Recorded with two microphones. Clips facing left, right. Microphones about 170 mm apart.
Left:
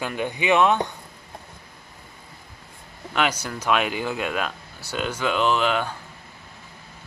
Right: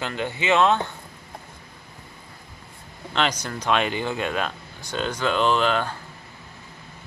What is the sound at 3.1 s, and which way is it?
Speech, 10° left (ahead or behind).